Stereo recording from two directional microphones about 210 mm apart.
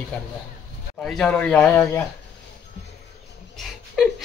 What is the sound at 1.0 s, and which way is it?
Speech, 5° left (ahead or behind).